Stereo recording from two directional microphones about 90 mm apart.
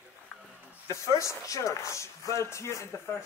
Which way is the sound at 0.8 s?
35° left (ahead or behind).